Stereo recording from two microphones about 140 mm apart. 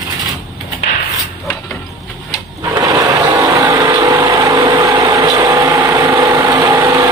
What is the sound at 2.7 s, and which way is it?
Vehicle, 25° right (ahead or behind).